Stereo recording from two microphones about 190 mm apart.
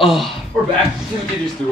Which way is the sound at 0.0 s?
Centre (ahead or behind).